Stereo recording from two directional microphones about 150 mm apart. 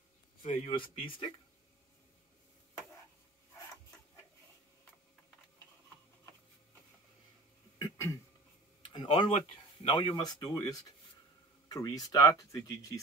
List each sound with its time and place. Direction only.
0.4 s speech: 35° left (ahead or behind)
7.8 s a sound: 20° left (ahead or behind)
8.8 s tick-tock: 30° left (ahead or behind)
9.8 s speech: 30° left (ahead or behind)